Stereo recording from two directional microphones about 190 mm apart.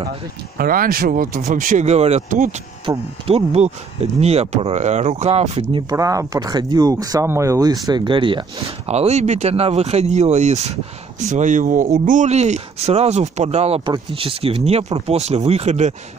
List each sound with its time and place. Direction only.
0.6 s speech: 50° right (ahead or behind)
2.9 s speech: 30° right (ahead or behind)
5.9 s speech: 15° right (ahead or behind); by 15.9 s 35° right (ahead or behind)